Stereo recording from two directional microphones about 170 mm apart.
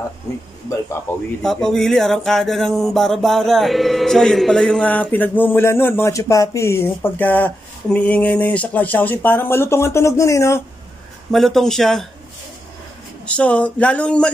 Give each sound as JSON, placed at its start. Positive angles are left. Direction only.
{"t": 0.3, "sound": "speech", "side_deg": 20}
{"t": 1.4, "sound": "speech", "side_deg": 5}
{"t": 11.3, "sound": "speech", "side_deg": 0}
{"t": 13.2, "sound": "speech", "side_deg": 5}